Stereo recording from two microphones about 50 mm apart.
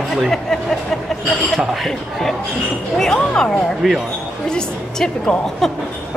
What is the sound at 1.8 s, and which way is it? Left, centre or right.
A woman's voice, centre.